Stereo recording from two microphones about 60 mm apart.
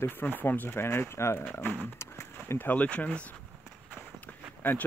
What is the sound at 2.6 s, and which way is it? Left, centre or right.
Speech, left.